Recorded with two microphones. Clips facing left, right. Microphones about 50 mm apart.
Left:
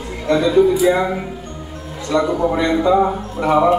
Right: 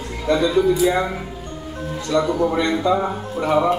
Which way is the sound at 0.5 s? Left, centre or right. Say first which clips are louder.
Left 6 dB; centre.